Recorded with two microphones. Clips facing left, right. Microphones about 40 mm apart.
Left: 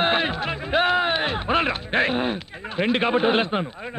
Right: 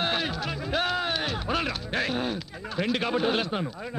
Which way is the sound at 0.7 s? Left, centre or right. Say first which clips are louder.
Left 7 dB; left.